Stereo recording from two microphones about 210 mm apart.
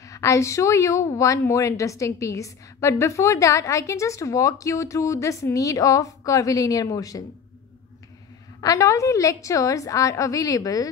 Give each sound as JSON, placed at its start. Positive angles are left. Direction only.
{"t": 0.0, "sound": "a woman's voice", "side_deg": 15}
{"t": 8.5, "sound": "a woman's voice", "side_deg": 15}